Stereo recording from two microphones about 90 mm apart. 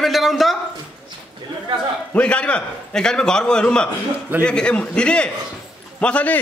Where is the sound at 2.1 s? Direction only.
15° left (ahead or behind).